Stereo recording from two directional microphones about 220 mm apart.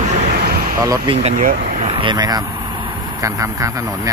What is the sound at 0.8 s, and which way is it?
Speech, 25° right (ahead or behind).